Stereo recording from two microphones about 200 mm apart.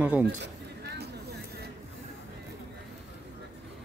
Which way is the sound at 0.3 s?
60° right (ahead or behind).